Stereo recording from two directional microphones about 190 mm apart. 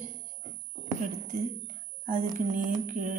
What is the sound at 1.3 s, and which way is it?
Speech, 45° right (ahead or behind).